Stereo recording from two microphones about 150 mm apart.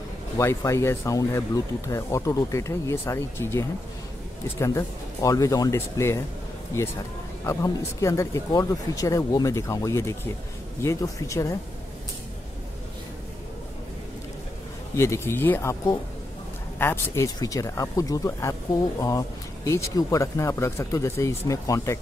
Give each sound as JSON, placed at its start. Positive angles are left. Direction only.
{"t": 0.4, "sound": "speech", "side_deg": 20}
{"t": 7.4, "sound": "speech", "side_deg": 20}
{"t": 15.0, "sound": "speech", "side_deg": 20}